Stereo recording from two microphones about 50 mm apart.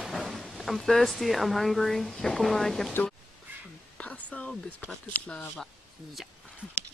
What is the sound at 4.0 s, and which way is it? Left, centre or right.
Speech, left.